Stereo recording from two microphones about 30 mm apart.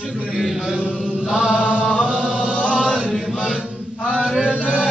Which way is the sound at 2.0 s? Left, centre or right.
Right.